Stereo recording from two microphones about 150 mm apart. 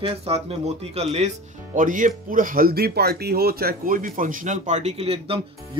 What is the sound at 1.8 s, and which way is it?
Speech, 60° right (ahead or behind).